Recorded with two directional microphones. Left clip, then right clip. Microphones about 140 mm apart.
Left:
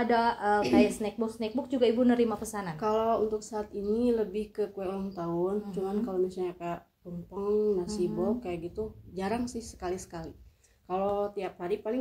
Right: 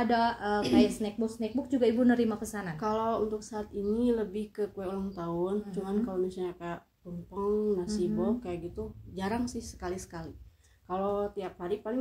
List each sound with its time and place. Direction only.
0.0 s a woman's voice: 20° left (ahead or behind)
2.8 s speech: 5° right (ahead or behind)